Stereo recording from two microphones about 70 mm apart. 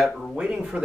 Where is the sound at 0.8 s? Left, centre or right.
Centre.